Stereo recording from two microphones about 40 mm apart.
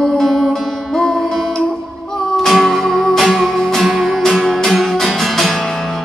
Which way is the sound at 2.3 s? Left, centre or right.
Centre.